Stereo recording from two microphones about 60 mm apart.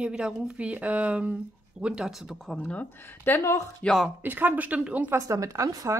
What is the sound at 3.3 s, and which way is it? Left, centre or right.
Speech, left.